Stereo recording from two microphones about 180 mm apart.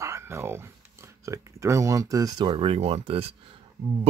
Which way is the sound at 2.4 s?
30° right (ahead or behind).